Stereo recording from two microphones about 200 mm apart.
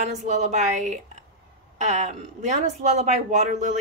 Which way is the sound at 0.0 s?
35° right (ahead or behind).